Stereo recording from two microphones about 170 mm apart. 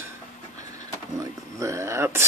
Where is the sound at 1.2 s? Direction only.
20° right (ahead or behind).